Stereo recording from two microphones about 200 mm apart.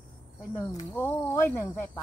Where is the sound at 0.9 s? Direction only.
10° left (ahead or behind).